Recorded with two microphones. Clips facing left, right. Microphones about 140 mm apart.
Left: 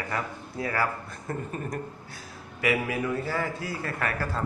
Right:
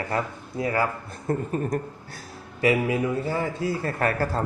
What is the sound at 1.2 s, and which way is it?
Speech, 35° right (ahead or behind).